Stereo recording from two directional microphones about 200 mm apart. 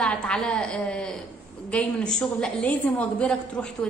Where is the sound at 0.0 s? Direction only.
5° left (ahead or behind).